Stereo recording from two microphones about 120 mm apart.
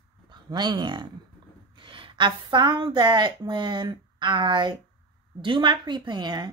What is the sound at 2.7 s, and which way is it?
A woman's voice, 40° right (ahead or behind).